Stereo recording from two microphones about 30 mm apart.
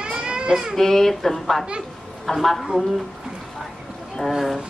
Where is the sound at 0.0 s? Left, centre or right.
Right.